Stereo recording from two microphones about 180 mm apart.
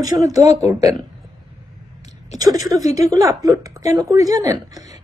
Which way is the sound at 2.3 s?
20° right (ahead or behind).